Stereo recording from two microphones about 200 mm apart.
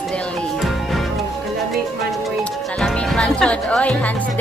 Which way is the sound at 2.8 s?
5° left (ahead or behind).